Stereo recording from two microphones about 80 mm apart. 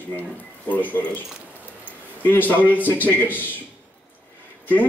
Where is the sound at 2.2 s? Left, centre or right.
Left.